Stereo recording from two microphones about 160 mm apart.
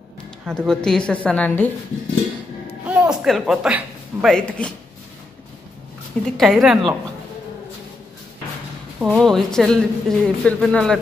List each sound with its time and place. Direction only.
0.5 s a woman's voice: 5° left (ahead or behind)
2.9 s speech: 5° right (ahead or behind)
6.3 s speech: centre (ahead or behind)
9.0 s speech: centre (ahead or behind)